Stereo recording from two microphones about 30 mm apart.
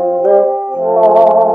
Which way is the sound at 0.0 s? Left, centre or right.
Centre.